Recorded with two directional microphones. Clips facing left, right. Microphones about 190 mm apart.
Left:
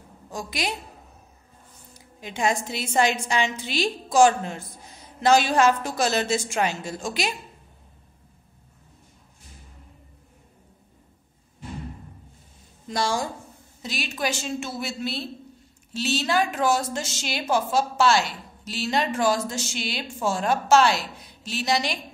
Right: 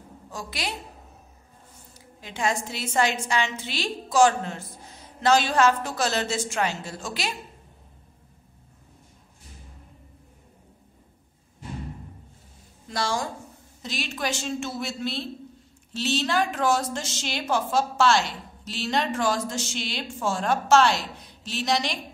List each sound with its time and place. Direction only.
0.3 s a woman's voice: 15° left (ahead or behind)
2.0 s a woman's voice: 15° left (ahead or behind)
12.9 s a woman's voice: 15° left (ahead or behind)